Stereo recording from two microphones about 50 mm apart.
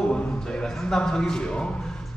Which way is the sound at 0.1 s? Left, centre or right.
Centre.